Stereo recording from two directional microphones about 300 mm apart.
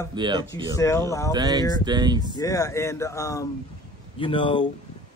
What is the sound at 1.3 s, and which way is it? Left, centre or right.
Speech, centre.